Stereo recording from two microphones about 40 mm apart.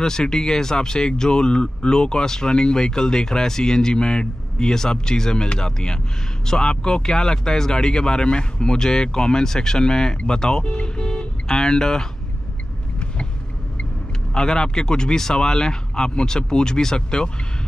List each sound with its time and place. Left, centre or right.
0.0 s speech: centre
14.3 s speech: centre